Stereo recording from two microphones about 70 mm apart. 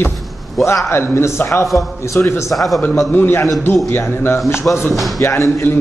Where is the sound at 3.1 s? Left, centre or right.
Left.